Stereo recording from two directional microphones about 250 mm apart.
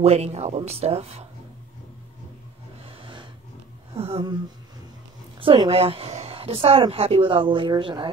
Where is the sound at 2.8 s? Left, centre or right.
Right.